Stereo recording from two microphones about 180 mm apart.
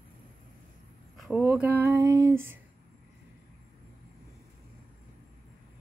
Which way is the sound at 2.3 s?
90° right.